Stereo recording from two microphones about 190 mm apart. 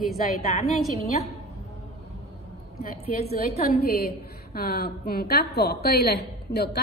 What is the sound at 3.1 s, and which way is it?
A woman's voice, 55° left (ahead or behind).